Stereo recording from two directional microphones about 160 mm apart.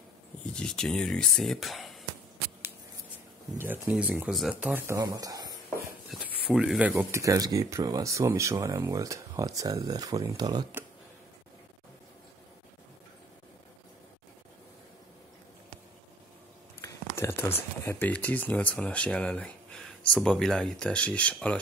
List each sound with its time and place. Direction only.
0.6 s speech: 5° left (ahead or behind)
3.5 s speech: 15° right (ahead or behind)
6.0 s speech: 5° right (ahead or behind); by 10.7 s 25° right (ahead or behind)
16.8 s speech: 15° left (ahead or behind)